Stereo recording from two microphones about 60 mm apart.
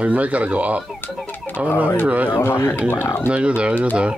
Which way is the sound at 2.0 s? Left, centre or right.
Right.